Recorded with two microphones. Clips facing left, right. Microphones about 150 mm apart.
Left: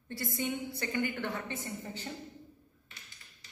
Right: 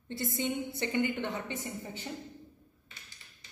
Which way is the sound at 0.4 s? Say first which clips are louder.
Right 2 dB; 20° right (ahead or behind).